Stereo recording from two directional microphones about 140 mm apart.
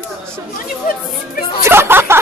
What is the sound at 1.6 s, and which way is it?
Speech, 15° right (ahead or behind).